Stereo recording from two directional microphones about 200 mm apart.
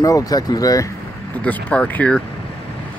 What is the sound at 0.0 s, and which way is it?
Speech, 15° left (ahead or behind).